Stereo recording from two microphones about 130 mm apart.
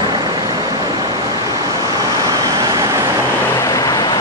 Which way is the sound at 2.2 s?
30° right (ahead or behind).